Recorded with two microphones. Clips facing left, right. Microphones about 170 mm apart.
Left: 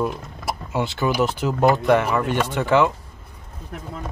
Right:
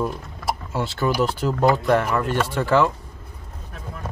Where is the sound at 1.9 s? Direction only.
5° left (ahead or behind).